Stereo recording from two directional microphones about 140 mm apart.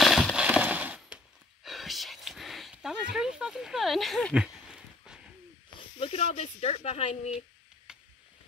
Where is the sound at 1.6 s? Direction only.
Centre (ahead or behind).